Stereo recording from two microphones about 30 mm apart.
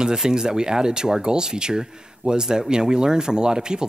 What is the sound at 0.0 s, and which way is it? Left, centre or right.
Speech, right.